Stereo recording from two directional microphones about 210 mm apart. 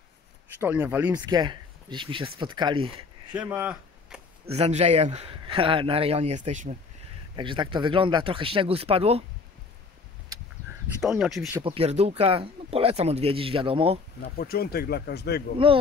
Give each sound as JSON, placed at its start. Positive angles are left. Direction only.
{"t": 0.6, "sound": "speech", "side_deg": -10}
{"t": 1.1, "sound": "speech", "side_deg": -20}
{"t": 3.3, "sound": "speech", "side_deg": -10}
{"t": 4.6, "sound": "speech", "side_deg": -30}
{"t": 7.3, "sound": "speech", "side_deg": -20}
{"t": 11.0, "sound": "speech", "side_deg": 0}
{"t": 11.6, "sound": "speech", "side_deg": -25}
{"t": 14.2, "sound": "speech", "side_deg": 45}
{"t": 15.5, "sound": "speech", "side_deg": -25}